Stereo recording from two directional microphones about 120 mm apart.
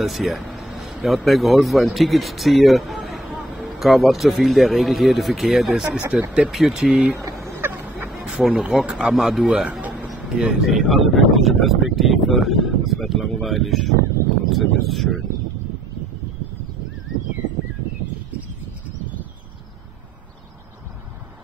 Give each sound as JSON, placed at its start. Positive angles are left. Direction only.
{"t": 0.0, "sound": "speech", "side_deg": 0}
{"t": 7.5, "sound": "a sound", "side_deg": -20}
{"t": 8.1, "sound": "speech", "side_deg": -5}